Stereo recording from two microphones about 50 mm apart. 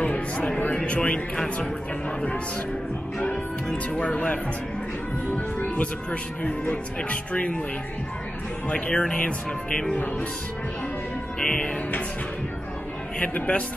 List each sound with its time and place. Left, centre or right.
0.0 s music: left
0.8 s speech: left
1.3 s speech: centre
3.7 s speech: left
7.0 s speech: left
8.6 s speech: left
8.9 s speech: centre
11.3 s speech: left
13.2 s speech: left